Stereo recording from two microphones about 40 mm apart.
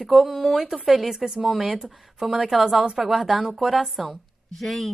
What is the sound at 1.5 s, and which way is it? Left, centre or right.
Speech, centre.